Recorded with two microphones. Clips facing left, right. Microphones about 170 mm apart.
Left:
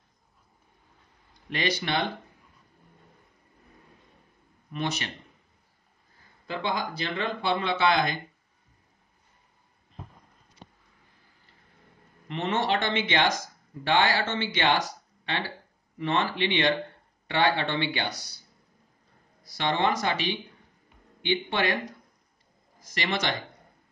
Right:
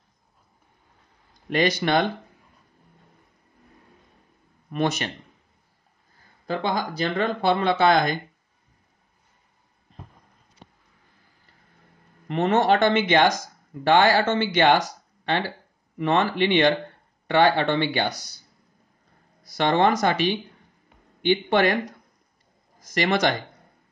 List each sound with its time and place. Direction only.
1.5 s speech: 45° right (ahead or behind)
4.6 s speech: 50° right (ahead or behind)
6.4 s speech: 40° right (ahead or behind)
12.3 s speech: 45° right (ahead or behind)
19.4 s speech: 45° right (ahead or behind)
22.8 s speech: 45° right (ahead or behind)